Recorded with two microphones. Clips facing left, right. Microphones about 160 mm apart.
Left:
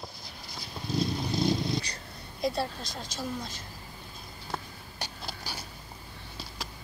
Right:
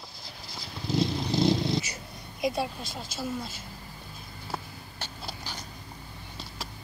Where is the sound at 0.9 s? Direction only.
25° right (ahead or behind).